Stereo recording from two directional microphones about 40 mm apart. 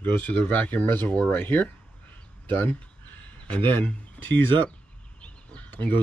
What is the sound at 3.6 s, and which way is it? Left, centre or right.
Speech, left.